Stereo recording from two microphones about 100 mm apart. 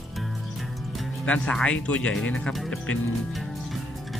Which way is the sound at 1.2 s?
10° left (ahead or behind).